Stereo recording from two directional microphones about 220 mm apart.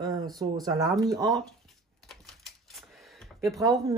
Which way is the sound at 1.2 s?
Centre (ahead or behind).